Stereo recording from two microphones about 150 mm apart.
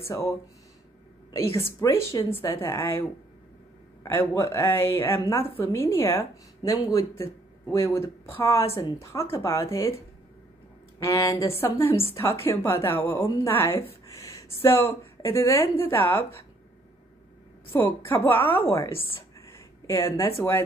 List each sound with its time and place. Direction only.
1.6 s a woman's voice: 15° left (ahead or behind)
11.0 s a woman's voice: 20° left (ahead or behind)
17.7 s a woman's voice: 15° left (ahead or behind)